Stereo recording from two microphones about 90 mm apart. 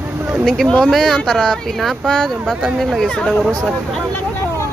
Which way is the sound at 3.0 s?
15° left (ahead or behind).